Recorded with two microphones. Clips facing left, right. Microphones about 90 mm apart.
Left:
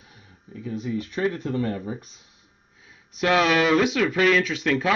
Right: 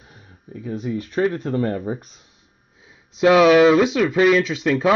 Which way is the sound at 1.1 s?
35° right (ahead or behind).